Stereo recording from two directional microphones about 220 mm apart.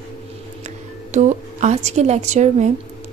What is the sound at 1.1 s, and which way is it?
Speech, 35° right (ahead or behind).